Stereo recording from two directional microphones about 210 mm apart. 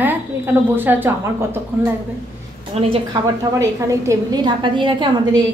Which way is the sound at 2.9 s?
20° right (ahead or behind).